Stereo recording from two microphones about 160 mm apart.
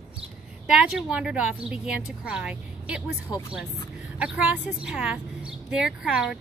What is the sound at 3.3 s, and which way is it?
Speech, 25° left (ahead or behind).